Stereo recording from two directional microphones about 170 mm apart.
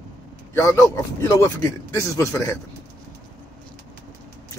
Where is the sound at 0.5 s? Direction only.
20° left (ahead or behind).